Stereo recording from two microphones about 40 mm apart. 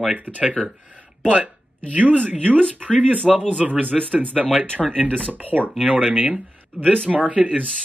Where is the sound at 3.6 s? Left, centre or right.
Right.